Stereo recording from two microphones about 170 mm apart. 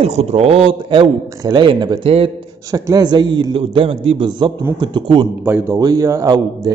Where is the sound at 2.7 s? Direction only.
25° right (ahead or behind).